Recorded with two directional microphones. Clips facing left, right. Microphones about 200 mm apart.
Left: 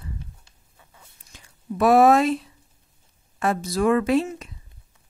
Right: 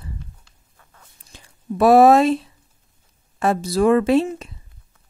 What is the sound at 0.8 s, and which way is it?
Biting, 10° left (ahead or behind).